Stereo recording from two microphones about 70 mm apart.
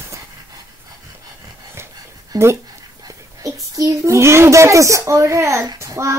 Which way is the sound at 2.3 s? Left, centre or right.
Right.